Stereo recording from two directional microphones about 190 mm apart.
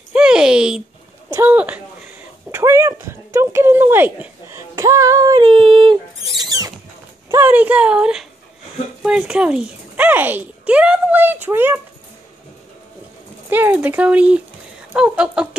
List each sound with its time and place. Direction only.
0.1 s a sound: 5° right (ahead or behind)
1.3 s speech: 10° right (ahead or behind); by 5.9 s 25° right (ahead or behind)
6.4 s rodents: 20° right (ahead or behind)
7.2 s speech: 10° right (ahead or behind)
13.5 s speech: 10° right (ahead or behind)